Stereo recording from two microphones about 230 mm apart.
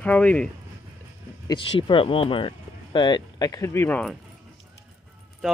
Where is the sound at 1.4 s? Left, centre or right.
Left.